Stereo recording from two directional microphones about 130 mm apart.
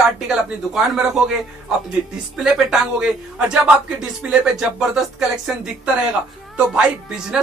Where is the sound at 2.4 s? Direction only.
5° right (ahead or behind).